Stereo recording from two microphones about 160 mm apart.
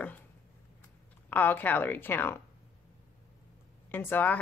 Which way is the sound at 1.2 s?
10° left (ahead or behind).